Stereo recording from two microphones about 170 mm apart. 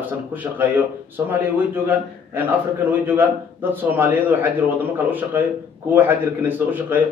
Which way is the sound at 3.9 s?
10° right (ahead or behind).